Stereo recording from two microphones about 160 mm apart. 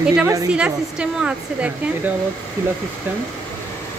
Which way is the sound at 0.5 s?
5° right (ahead or behind).